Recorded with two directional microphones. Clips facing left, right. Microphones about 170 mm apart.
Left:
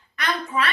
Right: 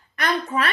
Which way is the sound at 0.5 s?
40° right (ahead or behind).